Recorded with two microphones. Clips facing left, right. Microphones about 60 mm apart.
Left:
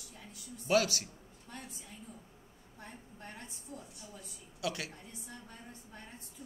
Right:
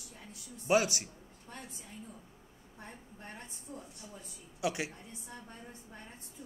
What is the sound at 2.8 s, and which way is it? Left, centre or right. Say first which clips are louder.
A woman's voice: even; right.